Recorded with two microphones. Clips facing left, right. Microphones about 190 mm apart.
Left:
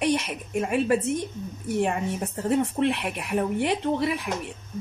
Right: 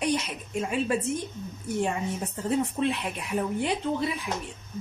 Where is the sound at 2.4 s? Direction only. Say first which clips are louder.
Left 3 dB; 65° left (ahead or behind).